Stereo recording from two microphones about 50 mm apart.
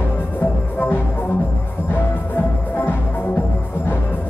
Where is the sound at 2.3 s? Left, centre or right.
Left.